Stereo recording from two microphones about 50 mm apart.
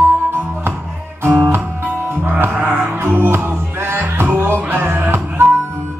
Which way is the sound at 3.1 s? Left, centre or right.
Right.